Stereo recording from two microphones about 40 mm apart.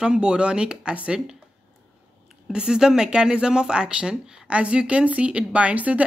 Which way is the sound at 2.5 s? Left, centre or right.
Centre.